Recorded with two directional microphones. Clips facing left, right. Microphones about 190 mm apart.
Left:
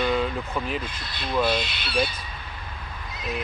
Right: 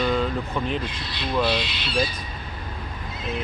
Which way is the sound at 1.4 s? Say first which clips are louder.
Left 1 dB; 50° left (ahead or behind).